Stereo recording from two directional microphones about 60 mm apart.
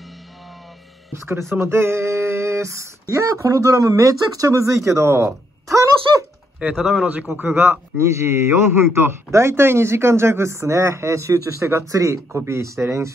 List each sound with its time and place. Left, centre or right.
1.1 s speech: right
4.6 s a man's voice: right
5.7 s a sound: right
6.7 s a man's voice: centre
7.2 s a man's voice: right